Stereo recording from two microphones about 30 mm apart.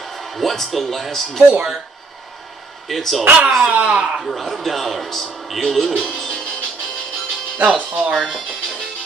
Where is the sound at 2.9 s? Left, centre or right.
Centre.